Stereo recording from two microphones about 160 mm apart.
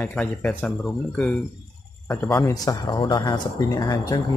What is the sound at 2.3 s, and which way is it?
Speech, 20° left (ahead or behind).